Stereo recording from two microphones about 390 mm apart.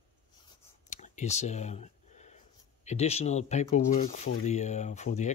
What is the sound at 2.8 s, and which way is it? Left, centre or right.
Speech, centre.